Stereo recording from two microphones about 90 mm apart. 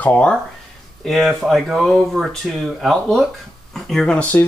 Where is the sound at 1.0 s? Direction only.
Centre (ahead or behind).